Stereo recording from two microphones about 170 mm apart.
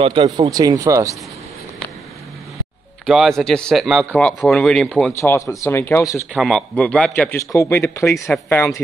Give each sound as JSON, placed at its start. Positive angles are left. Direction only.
{"t": 0.0, "sound": "speech", "side_deg": -30}
{"t": 3.1, "sound": "a man's voice", "side_deg": 0}
{"t": 5.2, "sound": "speech", "side_deg": 15}
{"t": 6.3, "sound": "a man's voice", "side_deg": -5}